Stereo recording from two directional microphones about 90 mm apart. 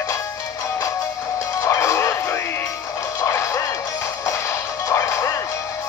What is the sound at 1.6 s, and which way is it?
Music, 35° left (ahead or behind).